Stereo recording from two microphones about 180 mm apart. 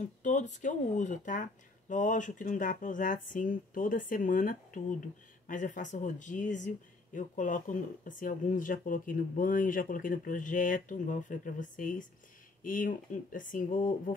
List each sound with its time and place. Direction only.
0.2 s speech: 45° left (ahead or behind)